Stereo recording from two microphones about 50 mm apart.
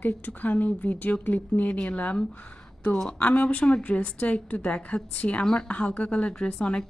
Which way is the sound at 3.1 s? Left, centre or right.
Left.